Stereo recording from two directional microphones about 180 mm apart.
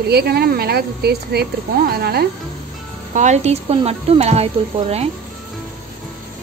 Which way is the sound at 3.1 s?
40° right (ahead or behind).